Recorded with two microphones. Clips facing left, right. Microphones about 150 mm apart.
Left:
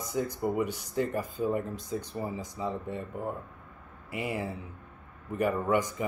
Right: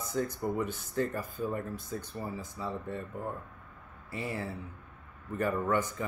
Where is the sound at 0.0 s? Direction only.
15° left (ahead or behind).